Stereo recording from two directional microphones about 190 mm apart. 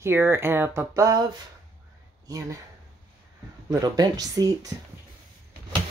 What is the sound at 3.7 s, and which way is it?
Speech, 20° right (ahead or behind).